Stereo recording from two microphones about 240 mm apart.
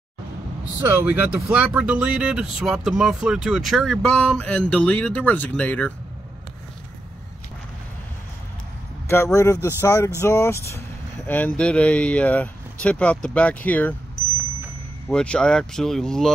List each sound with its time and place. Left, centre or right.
0.7 s speech: centre
9.0 s speech: centre